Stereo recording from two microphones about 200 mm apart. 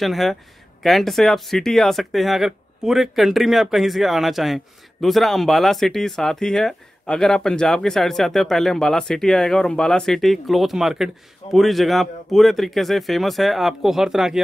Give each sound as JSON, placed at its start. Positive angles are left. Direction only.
{"t": 0.0, "sound": "speech", "side_deg": 0}